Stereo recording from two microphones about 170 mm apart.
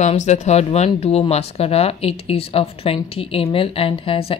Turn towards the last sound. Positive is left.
turn(degrees=35)  # may be behind; listen again after turning